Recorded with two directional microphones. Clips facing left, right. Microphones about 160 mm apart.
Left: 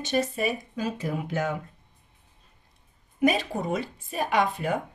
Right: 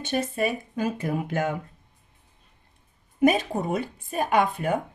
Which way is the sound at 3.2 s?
50° right (ahead or behind).